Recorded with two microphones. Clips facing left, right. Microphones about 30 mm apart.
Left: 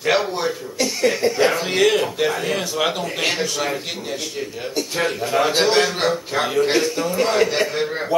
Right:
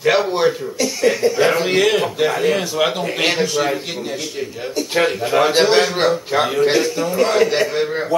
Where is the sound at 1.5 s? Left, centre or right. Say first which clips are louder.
Right 2 dB; centre.